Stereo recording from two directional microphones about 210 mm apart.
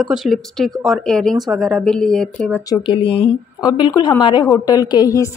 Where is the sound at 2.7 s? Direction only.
25° left (ahead or behind).